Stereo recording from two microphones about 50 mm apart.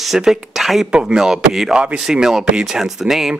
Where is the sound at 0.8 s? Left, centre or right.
Centre.